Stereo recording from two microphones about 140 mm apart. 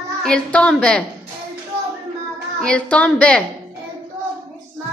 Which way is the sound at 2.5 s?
5° left (ahead or behind).